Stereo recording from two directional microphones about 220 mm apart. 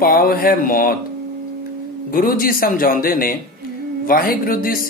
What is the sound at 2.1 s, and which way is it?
Speech, 40° left (ahead or behind).